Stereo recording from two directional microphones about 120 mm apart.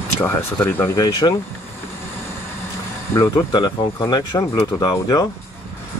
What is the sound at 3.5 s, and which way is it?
Speech, 35° left (ahead or behind).